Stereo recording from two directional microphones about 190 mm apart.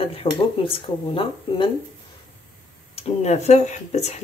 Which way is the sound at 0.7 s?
25° left (ahead or behind).